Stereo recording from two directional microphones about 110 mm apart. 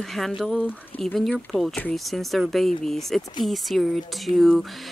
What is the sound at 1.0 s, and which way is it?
Speech, 5° left (ahead or behind).